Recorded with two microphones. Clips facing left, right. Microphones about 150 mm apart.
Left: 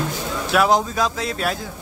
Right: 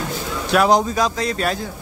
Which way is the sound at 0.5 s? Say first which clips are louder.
Right 2 dB; centre (ahead or behind).